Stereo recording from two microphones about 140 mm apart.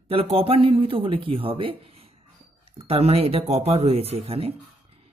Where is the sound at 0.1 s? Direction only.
40° right (ahead or behind).